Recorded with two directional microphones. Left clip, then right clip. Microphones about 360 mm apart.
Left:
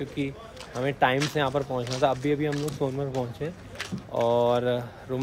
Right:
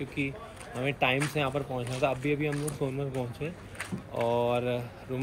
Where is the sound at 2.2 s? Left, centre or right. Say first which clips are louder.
Left 3 dB; left.